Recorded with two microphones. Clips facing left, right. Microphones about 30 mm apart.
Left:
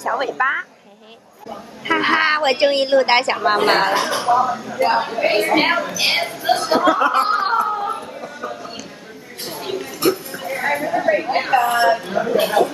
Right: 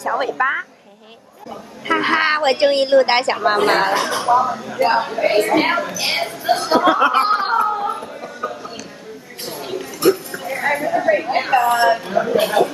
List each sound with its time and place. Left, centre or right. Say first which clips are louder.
0.0 s a woman's voice: even; centre
1.9 s a woman's voice: even; centre
5.2 s a woman's voice: right 1 dB; centre
5.7 s a woman's voice: left 1 dB; centre
7.6 s a sound: right 1 dB; centre
9.5 s a sound: left 1 dB; centre